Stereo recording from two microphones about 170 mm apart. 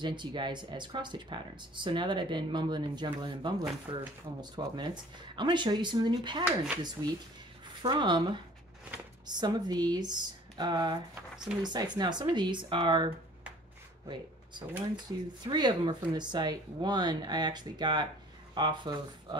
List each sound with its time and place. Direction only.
0.0 s speech: 25° right (ahead or behind)